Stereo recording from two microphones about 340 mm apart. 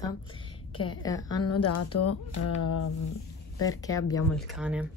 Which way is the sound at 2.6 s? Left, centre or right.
Left.